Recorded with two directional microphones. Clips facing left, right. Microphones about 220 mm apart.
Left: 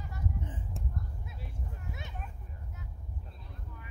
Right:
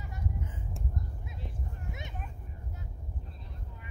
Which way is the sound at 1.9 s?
20° right (ahead or behind).